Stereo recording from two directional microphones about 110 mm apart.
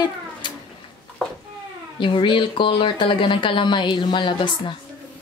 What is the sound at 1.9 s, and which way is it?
Speech, 50° left (ahead or behind).